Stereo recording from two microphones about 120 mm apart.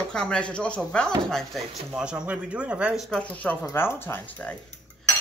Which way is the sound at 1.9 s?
10° right (ahead or behind).